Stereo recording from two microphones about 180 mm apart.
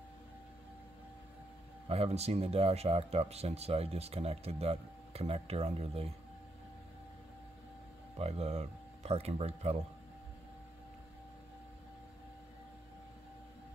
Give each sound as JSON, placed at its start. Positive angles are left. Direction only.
{"t": 1.9, "sound": "speech", "side_deg": -35}
{"t": 8.2, "sound": "speech", "side_deg": -35}